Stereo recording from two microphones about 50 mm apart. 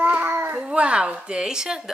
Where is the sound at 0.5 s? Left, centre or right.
Right.